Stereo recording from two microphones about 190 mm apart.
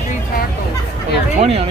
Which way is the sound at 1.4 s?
35° right (ahead or behind).